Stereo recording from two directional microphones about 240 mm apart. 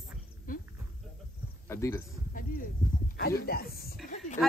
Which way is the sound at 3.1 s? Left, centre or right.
Left.